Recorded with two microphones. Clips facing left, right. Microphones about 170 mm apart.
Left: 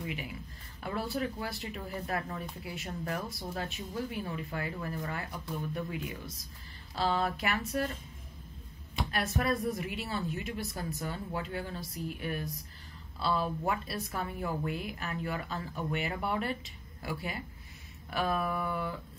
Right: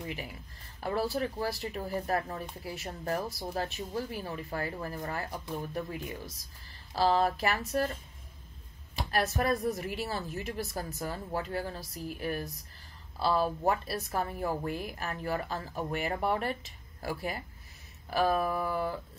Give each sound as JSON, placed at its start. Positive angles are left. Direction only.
{"t": 0.0, "sound": "speech", "side_deg": -40}
{"t": 9.1, "sound": "speech", "side_deg": -40}